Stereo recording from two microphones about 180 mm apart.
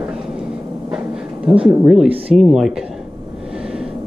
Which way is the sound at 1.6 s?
5° right (ahead or behind).